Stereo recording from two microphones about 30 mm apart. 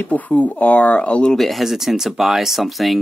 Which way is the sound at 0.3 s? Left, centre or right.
Left.